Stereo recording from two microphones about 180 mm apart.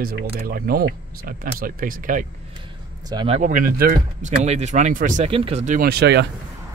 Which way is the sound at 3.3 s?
50° right (ahead or behind).